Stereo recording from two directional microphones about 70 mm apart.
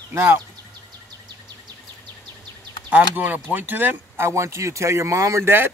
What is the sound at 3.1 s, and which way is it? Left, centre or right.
Speech, right.